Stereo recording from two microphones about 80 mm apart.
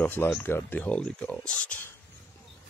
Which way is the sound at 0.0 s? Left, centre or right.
Left.